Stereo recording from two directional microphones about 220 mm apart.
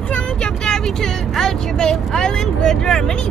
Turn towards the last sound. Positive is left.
turn(degrees=5)  # may be behind; listen again after turning